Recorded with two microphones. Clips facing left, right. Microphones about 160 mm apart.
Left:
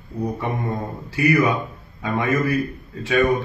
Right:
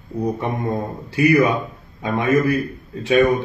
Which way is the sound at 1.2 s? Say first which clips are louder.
Right 3 dB; 25° right (ahead or behind).